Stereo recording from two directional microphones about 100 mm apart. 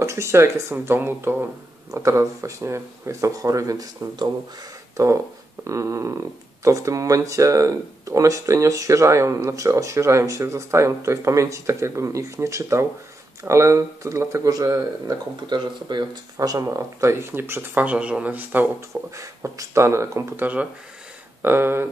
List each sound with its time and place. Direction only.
0.0 s speech: 30° right (ahead or behind)
15.5 s speech: 45° right (ahead or behind); by 18.7 s 20° right (ahead or behind)
19.1 s speech: 35° right (ahead or behind)